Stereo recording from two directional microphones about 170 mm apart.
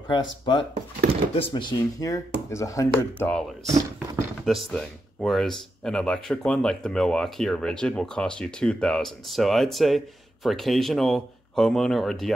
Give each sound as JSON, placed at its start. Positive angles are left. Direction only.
{"t": 0.1, "sound": "speech", "side_deg": 25}
{"t": 4.5, "sound": "speech", "side_deg": 0}